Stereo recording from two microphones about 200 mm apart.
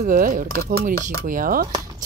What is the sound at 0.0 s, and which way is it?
Speech, 45° right (ahead or behind).